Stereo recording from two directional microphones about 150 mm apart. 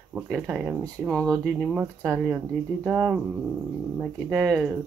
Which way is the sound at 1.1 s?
5° left (ahead or behind).